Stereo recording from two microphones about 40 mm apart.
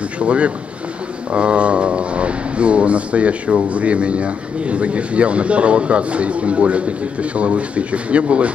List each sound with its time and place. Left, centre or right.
0.2 s speech: right